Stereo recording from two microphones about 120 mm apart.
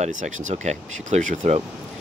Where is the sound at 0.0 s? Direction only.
90° right.